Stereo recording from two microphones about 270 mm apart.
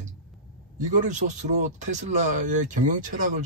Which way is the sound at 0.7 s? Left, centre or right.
Right.